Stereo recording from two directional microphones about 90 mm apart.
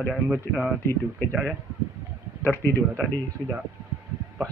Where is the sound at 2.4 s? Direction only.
25° left (ahead or behind).